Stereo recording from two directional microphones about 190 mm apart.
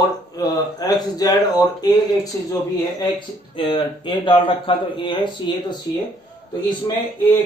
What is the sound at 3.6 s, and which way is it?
Speech, 25° left (ahead or behind).